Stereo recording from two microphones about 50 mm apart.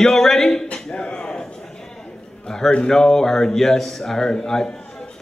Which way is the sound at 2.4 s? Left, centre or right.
Centre.